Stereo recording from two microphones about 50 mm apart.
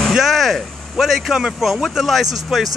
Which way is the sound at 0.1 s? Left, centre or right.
Centre.